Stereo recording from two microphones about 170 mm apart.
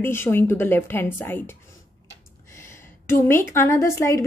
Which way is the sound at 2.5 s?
15° left (ahead or behind).